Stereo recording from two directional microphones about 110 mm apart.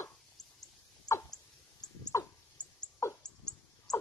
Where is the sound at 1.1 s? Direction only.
35° left (ahead or behind).